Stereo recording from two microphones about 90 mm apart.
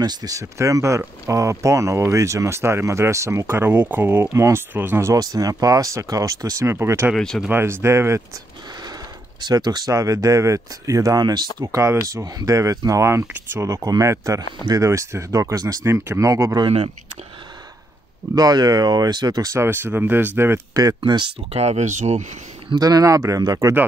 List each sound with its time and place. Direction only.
0.0 s speech: 50° right (ahead or behind); by 5.1 s 25° right (ahead or behind)
5.1 s speech: 40° right (ahead or behind)
7.2 s speech: 5° left (ahead or behind)
7.4 s speech: 25° right (ahead or behind)
8.8 s speech: 50° right (ahead or behind); by 13.7 s 25° right (ahead or behind)
13.7 s speech: 40° right (ahead or behind)
15.8 s speech: 30° right (ahead or behind)
16.6 s speech: 90° right
18.3 s speech: 50° right (ahead or behind)
19.5 s speech: 25° right (ahead or behind)
21.0 s speech: 65° right (ahead or behind)
22.8 s speech: 45° right (ahead or behind)